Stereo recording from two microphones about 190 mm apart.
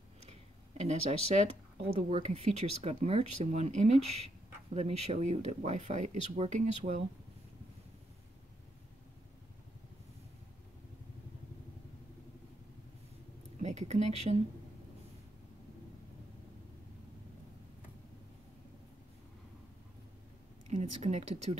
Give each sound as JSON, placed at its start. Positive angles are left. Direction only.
{"t": 0.3, "sound": "a sound", "side_deg": -35}
{"t": 2.0, "sound": "speech", "side_deg": -30}
{"t": 13.6, "sound": "speech", "side_deg": -35}
{"t": 20.7, "sound": "speech", "side_deg": -35}